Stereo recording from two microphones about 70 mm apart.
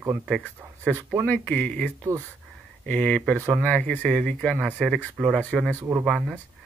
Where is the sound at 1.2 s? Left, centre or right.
Centre.